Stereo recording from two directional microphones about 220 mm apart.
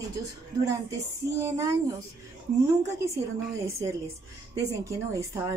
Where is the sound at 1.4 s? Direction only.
15° right (ahead or behind).